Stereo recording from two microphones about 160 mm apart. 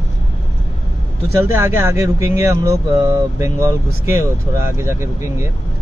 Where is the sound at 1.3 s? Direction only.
15° right (ahead or behind).